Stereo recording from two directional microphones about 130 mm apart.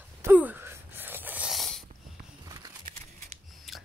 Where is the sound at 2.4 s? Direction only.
30° right (ahead or behind).